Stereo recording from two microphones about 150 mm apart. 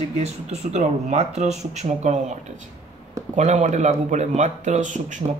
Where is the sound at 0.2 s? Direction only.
45° right (ahead or behind).